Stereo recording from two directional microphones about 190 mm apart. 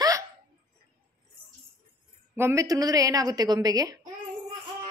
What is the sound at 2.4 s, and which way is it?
A woman's voice, 15° right (ahead or behind).